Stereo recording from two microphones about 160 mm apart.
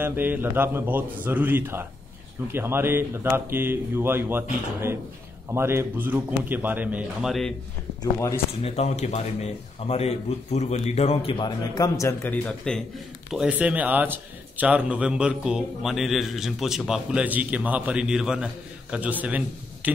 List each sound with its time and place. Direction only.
0.0 s a man's voice: 10° right (ahead or behind)
8.0 s speech: 20° left (ahead or behind)
8.6 s speech: 40° left (ahead or behind); by 12.8 s 5° left (ahead or behind)
13.3 s a man's voice: 5° right (ahead or behind)